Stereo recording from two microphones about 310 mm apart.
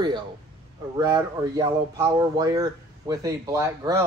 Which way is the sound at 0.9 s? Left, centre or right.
Centre.